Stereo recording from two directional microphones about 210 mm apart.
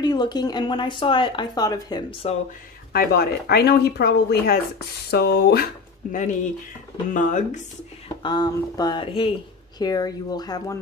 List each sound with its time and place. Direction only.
0.0 s speech: 20° left (ahead or behind)
2.9 s speech: 45° left (ahead or behind)
7.1 s speech: 35° left (ahead or behind)
8.2 s speech: 20° left (ahead or behind)